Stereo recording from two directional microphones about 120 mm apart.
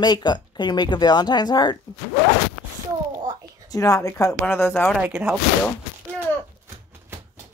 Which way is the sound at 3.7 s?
30° left (ahead or behind).